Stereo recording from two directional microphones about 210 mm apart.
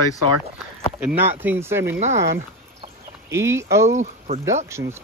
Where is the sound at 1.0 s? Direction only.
10° right (ahead or behind).